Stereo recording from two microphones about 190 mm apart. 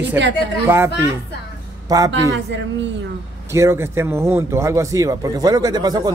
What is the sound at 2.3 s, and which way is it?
Speech, 70° right (ahead or behind).